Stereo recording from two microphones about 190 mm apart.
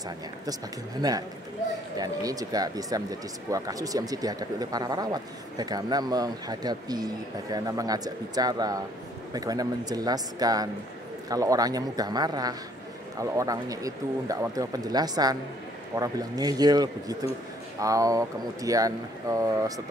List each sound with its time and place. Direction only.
1.0 s speech: 20° right (ahead or behind)